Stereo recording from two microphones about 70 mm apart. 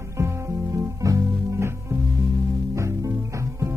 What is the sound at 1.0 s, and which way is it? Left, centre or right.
Music, right.